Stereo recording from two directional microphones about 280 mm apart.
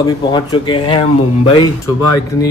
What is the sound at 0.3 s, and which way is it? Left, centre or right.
Speech, centre.